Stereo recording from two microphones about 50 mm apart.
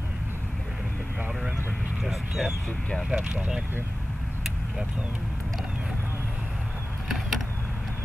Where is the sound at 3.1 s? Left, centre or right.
Centre.